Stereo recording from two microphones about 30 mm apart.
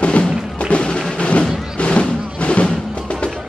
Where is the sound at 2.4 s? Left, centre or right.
Left.